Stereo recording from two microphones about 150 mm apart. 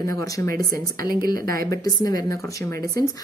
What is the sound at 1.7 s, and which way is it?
A woman's voice, 25° left (ahead or behind).